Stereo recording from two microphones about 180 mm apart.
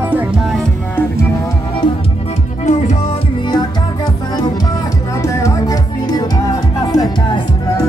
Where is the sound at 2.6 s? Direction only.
40° left (ahead or behind).